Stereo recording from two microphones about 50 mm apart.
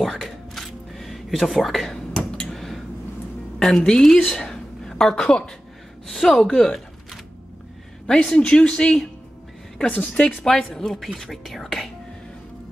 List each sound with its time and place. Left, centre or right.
0.0 s a sound: centre
3.5 s a woman's voice: centre
6.0 s speech: centre
8.1 s a woman's voice: centre
10.4 s speech: centre